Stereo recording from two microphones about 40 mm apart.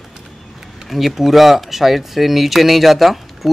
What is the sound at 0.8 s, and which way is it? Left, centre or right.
Speech, centre.